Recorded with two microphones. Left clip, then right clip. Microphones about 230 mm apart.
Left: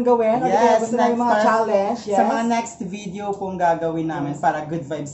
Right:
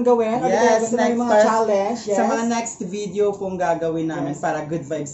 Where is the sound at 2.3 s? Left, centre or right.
Centre.